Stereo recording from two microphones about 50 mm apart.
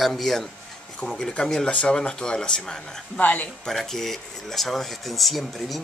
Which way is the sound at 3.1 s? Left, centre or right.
Left.